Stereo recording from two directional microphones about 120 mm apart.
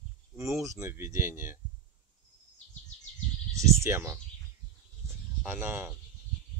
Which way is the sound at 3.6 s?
20° right (ahead or behind).